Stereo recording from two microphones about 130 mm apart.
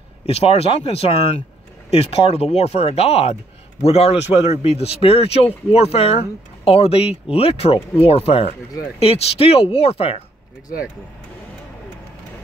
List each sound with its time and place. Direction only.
0.3 s speech: 50° left (ahead or behind)